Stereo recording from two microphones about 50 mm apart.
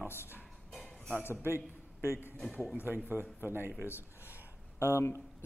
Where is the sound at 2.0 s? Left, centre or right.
Left.